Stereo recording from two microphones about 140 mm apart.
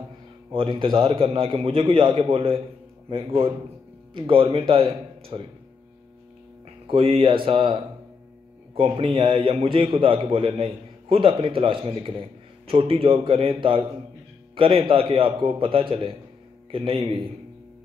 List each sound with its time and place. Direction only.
0.5 s a man's voice: 40° right (ahead or behind)
6.9 s a man's voice: 40° right (ahead or behind)